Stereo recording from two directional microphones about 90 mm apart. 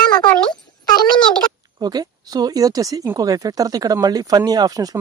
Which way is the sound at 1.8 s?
50° right (ahead or behind).